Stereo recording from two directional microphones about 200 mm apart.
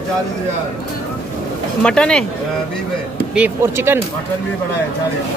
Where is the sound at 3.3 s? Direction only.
10° right (ahead or behind).